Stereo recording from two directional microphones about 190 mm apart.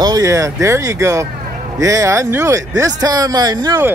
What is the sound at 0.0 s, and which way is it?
Speech, 15° right (ahead or behind).